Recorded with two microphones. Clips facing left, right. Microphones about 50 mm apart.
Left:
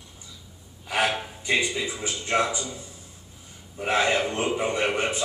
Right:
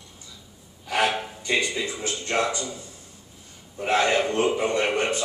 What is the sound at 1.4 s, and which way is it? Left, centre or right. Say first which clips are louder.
Music: even; centre.